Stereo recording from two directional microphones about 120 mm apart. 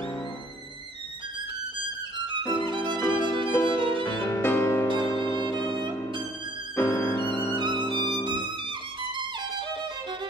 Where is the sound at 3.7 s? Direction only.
45° right (ahead or behind).